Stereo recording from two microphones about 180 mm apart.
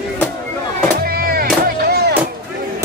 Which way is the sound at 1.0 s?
55° right (ahead or behind).